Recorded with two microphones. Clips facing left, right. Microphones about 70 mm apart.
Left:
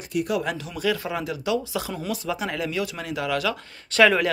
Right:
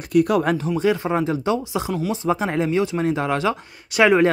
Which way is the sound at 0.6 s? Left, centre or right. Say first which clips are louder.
Right 6 dB; right.